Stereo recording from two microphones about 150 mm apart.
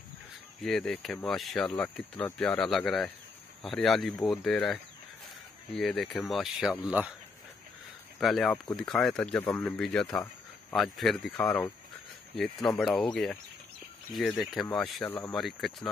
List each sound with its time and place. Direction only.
0.6 s speech: centre (ahead or behind)
8.2 s speech: centre (ahead or behind)
11.4 s speech: 15° left (ahead or behind)
12.4 s speech: centre (ahead or behind)
15.0 s speech: 15° left (ahead or behind)
15.3 s speech: centre (ahead or behind)